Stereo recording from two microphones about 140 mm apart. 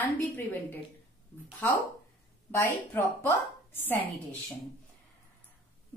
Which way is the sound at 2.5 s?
15° left (ahead or behind).